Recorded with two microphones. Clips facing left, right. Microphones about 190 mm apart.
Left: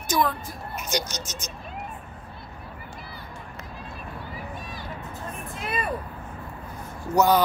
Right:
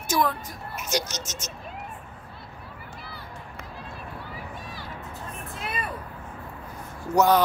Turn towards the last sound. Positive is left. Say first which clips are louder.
# even
turn(degrees=0)  # may be behind; listen again after turning